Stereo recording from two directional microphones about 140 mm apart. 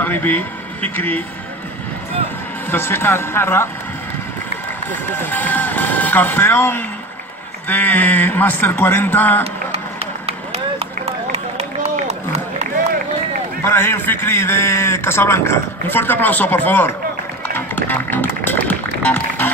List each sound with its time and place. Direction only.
0.0 s a man's voice: 15° left (ahead or behind)
2.7 s a man's voice: 15° left (ahead or behind)
5.1 s a man's voice: 15° left (ahead or behind)
9.7 s run: 45° right (ahead or behind)
11.3 s run: 50° right (ahead or behind)
13.7 s a man's voice: 15° left (ahead or behind)
17.6 s music: 15° left (ahead or behind)